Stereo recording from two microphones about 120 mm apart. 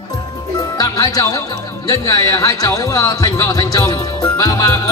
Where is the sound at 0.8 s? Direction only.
30° left (ahead or behind).